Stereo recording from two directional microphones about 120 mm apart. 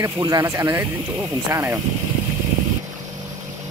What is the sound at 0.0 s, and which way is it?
Speech, 30° right (ahead or behind).